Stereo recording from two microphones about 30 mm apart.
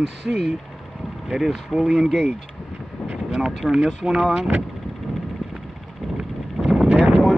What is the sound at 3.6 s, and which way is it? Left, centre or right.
Speech, centre.